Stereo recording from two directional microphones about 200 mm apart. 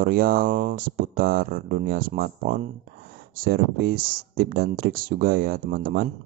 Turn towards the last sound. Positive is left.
turn(degrees=-45)  # may be behind; listen again after turning